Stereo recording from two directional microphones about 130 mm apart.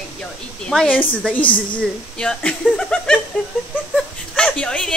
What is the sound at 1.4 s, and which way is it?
Speech, 40° left (ahead or behind).